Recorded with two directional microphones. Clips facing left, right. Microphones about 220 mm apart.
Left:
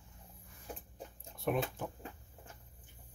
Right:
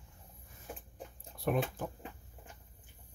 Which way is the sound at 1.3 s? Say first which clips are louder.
Right 2 dB; centre (ahead or behind).